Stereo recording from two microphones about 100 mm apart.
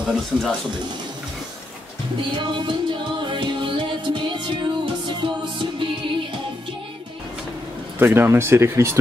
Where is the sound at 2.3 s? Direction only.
55° right (ahead or behind).